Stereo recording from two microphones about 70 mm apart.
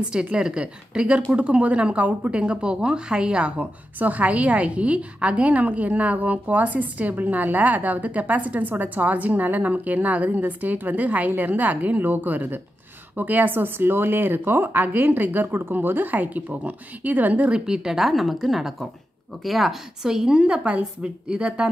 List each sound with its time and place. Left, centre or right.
0.0 s a woman's voice: centre